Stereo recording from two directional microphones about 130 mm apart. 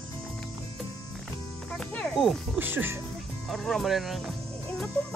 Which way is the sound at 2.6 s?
15° right (ahead or behind).